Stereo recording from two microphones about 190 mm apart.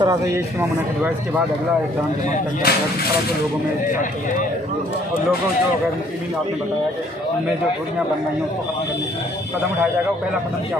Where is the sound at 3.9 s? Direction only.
40° left (ahead or behind).